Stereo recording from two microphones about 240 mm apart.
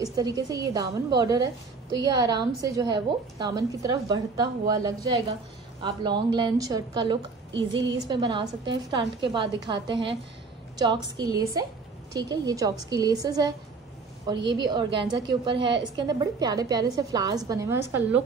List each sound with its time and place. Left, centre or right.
0.0 s a woman's voice: centre